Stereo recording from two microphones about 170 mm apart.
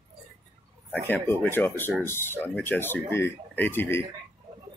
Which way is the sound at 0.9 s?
10° left (ahead or behind).